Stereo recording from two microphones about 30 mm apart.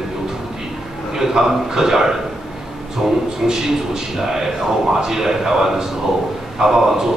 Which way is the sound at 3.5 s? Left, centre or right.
Centre.